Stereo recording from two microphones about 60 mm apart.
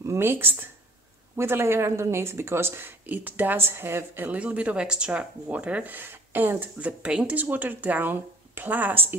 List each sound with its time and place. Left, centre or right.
0.0 s a sound: right
0.3 s speech: right
3.1 s speech: right
4.3 s speech: right
6.8 s speech: right
7.3 s speech: right